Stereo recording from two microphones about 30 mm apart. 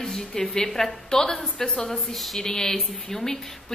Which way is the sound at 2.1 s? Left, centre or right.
Centre.